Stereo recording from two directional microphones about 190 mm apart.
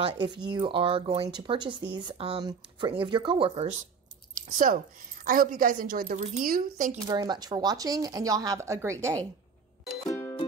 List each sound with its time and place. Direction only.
0.0 s speech: 25° right (ahead or behind)
4.5 s a woman's voice: 45° right (ahead or behind)
7.1 s speech: 20° right (ahead or behind)
10.0 s music: 10° left (ahead or behind)